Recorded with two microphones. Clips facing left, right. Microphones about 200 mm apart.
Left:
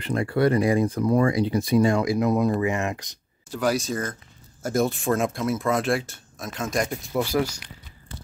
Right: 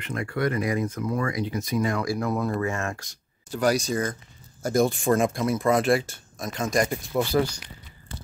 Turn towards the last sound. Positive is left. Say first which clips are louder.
# right 1 dB
turn(degrees=0)  # may be behind; listen again after turning